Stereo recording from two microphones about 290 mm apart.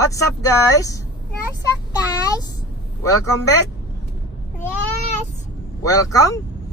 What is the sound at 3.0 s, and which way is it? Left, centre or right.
Speech, centre.